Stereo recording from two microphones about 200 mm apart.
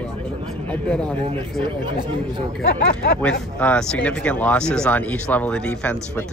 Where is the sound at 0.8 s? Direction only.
5° left (ahead or behind).